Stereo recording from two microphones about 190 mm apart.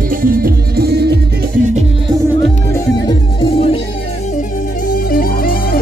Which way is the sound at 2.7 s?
20° left (ahead or behind).